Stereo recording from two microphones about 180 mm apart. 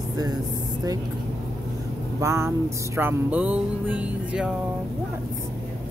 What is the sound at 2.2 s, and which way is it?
Vehicle, 15° right (ahead or behind).